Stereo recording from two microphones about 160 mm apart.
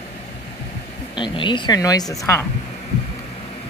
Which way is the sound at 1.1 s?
30° left (ahead or behind).